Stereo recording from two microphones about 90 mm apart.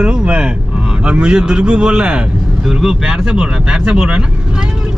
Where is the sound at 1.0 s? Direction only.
10° right (ahead or behind).